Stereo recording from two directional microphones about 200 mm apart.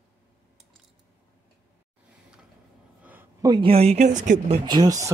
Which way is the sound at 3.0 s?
10° right (ahead or behind).